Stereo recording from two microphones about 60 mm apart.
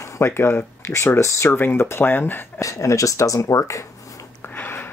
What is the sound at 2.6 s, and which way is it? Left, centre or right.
Speech, left.